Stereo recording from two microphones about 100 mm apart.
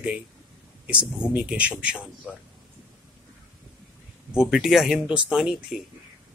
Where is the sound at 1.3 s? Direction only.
10° right (ahead or behind).